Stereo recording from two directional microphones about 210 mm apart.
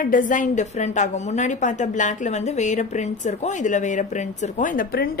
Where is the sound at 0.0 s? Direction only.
40° left (ahead or behind).